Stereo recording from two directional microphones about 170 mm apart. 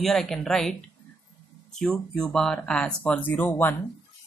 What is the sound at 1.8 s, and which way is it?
Speech, 5° left (ahead or behind).